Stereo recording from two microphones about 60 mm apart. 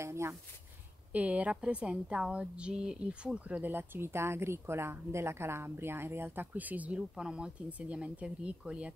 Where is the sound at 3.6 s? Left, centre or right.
Right; by 8.9 s centre.